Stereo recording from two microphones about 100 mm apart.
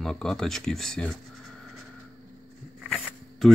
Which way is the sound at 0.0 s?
5° left (ahead or behind).